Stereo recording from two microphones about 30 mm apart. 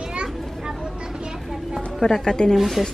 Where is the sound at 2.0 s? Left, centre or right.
Left.